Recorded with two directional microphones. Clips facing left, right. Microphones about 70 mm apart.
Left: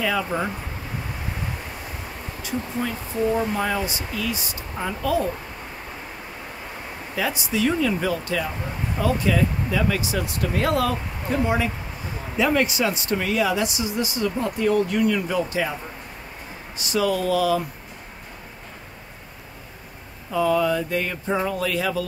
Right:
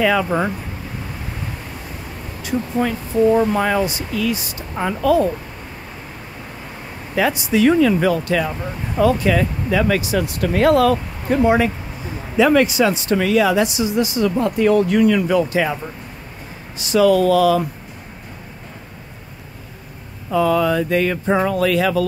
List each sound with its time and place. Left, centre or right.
0.0 s speech: right
2.4 s speech: right
7.2 s speech: right
12.4 s speech: right
16.7 s speech: right
20.2 s speech: right